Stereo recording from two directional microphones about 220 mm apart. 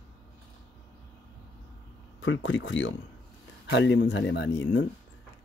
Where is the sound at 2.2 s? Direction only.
60° left (ahead or behind).